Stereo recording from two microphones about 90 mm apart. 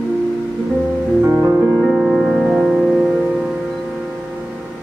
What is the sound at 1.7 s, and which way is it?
Music, 5° right (ahead or behind).